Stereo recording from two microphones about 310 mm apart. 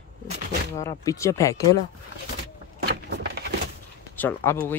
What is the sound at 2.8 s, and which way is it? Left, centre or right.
Vehicle, right.